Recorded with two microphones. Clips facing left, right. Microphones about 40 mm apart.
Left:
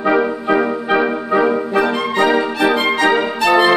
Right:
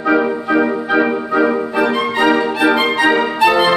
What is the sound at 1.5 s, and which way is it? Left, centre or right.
Music, centre.